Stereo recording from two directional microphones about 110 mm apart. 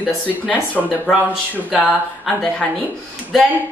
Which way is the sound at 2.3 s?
Centre (ahead or behind).